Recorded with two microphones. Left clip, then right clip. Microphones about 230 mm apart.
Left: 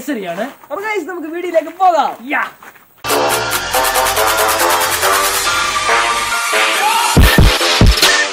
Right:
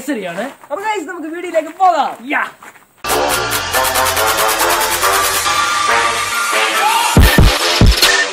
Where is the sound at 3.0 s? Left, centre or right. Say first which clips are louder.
Left 1 dB; centre.